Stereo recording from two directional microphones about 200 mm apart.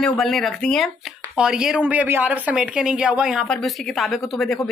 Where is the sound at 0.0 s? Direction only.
5° left (ahead or behind).